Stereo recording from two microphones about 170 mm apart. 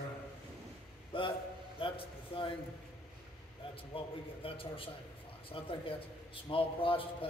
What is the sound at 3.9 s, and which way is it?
A man's voice, 30° left (ahead or behind).